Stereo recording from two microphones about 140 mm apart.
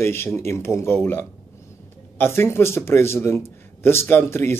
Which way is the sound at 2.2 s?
15° left (ahead or behind).